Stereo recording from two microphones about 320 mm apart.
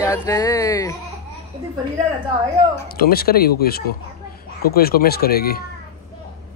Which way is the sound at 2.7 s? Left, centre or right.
Left.